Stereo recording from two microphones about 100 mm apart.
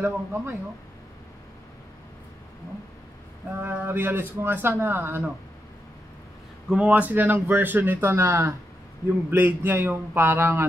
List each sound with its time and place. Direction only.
0.0 s speech: 25° right (ahead or behind)
3.5 s speech: 25° right (ahead or behind)
6.7 s speech: 10° right (ahead or behind)